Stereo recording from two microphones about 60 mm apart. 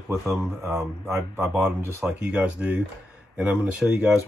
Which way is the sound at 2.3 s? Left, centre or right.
Right.